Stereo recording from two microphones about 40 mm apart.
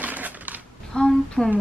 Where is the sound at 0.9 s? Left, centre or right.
Left.